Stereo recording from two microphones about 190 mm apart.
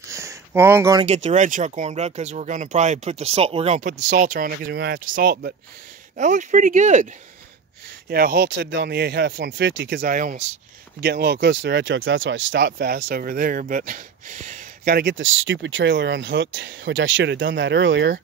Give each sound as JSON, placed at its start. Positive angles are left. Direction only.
{"t": 0.1, "sound": "a sound", "side_deg": -15}
{"t": 1.0, "sound": "speech", "side_deg": -35}
{"t": 6.1, "sound": "speech", "side_deg": -40}
{"t": 8.1, "sound": "speech", "side_deg": -50}
{"t": 10.0, "sound": "speech", "side_deg": -45}
{"t": 11.0, "sound": "speech", "side_deg": -60}